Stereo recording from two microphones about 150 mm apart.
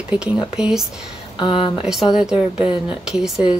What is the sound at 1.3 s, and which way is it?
Speech, 30° left (ahead or behind).